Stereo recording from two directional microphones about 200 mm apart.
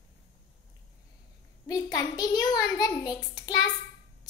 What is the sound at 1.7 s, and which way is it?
A child's voice, 20° left (ahead or behind).